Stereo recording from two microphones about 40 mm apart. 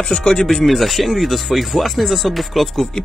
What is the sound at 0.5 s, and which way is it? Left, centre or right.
Speech, centre.